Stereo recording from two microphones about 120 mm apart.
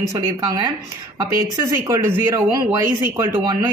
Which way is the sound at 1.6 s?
25° right (ahead or behind).